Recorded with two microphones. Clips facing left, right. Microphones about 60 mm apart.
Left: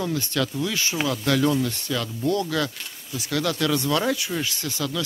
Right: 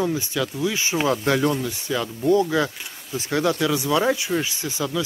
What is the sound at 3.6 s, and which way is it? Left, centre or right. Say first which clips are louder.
Speech: right 2 dB; centre.